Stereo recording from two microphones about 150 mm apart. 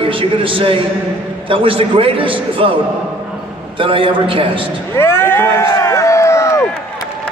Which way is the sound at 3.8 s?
35° right (ahead or behind).